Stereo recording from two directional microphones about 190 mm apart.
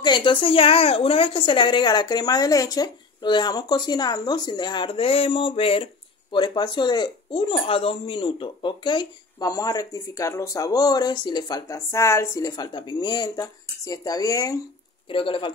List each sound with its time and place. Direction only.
0.0 s speech: 25° left (ahead or behind)